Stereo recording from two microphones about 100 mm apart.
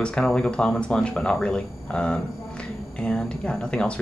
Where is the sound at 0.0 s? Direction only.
10° left (ahead or behind).